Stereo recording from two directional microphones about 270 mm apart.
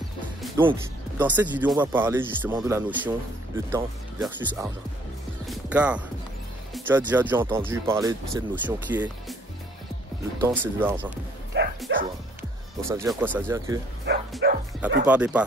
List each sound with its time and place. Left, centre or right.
0.7 s speech: centre
10.4 s speech: centre
11.5 s music: right
12.4 s speech: centre
14.1 s bow-wow: right
15.0 s speech: centre